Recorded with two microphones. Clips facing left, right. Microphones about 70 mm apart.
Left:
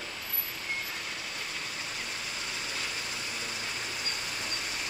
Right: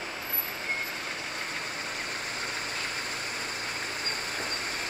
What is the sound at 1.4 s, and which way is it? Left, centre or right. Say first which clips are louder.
Vehicle: right 3 dB; right.